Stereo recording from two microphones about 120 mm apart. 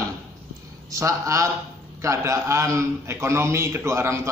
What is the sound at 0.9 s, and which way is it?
A man's voice, 25° right (ahead or behind).